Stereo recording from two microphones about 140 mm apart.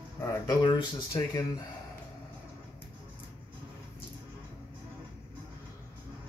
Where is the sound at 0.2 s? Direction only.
25° left (ahead or behind).